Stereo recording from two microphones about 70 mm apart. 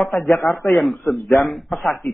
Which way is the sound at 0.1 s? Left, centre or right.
Left.